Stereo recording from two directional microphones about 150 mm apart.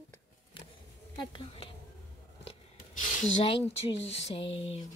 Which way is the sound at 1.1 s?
40° left (ahead or behind).